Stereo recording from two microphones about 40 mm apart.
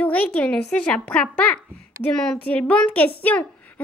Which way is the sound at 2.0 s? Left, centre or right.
Left.